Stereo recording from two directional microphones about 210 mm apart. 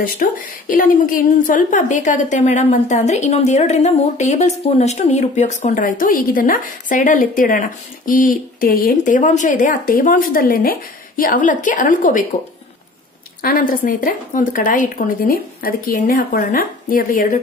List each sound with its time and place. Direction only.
0.0 s a woman's voice: 40° left (ahead or behind)
13.4 s a woman's voice: 40° left (ahead or behind)